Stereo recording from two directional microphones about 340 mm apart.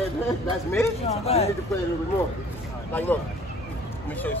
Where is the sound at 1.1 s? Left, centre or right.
Centre.